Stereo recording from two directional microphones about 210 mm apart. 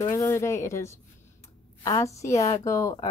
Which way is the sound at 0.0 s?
15° left (ahead or behind).